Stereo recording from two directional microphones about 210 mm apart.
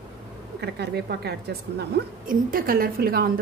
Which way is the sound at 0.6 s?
50° right (ahead or behind).